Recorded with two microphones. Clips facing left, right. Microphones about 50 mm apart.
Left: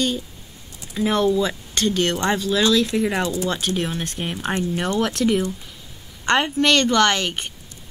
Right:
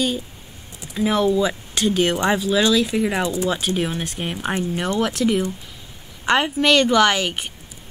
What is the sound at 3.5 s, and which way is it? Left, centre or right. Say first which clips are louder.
Speech: right 1 dB; centre.